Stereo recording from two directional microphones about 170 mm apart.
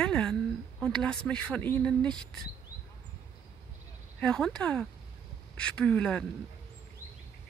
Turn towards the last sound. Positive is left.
turn(degrees=5)  # may be behind; listen again after turning